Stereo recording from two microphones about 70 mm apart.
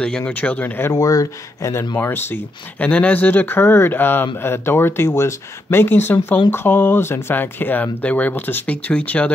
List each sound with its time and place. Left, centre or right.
0.2 s speech: left
0.9 s speech: left
2.0 s speech: left